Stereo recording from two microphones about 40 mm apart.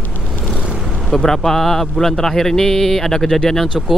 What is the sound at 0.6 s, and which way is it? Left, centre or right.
Vehicle, right.